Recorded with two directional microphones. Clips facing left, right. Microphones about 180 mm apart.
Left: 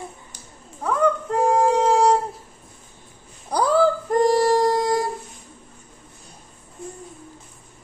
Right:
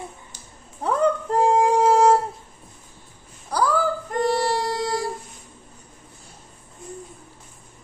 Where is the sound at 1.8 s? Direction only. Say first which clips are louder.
Right 1 dB; 5° right (ahead or behind).